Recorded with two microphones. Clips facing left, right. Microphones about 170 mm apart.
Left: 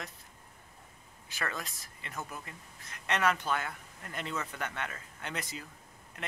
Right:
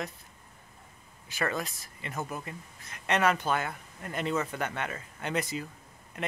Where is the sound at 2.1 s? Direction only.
45° right (ahead or behind).